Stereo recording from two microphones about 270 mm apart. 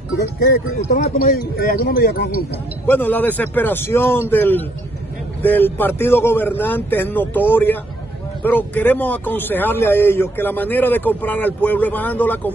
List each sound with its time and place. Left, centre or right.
0.4 s speech: left
2.9 s a man's voice: centre